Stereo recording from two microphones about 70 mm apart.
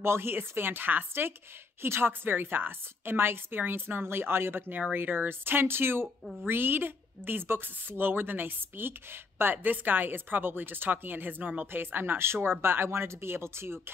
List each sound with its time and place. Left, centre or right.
0.0 s speech: right